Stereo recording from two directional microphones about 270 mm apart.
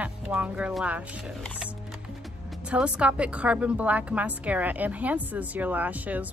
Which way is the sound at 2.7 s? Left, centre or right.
Centre.